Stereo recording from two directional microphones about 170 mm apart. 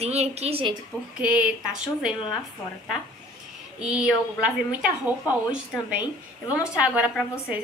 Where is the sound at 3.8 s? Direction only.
5° right (ahead or behind).